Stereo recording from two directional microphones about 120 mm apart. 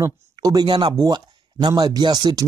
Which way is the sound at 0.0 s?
30° right (ahead or behind).